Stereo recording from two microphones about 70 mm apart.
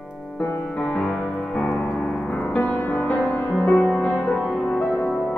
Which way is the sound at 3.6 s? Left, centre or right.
Centre.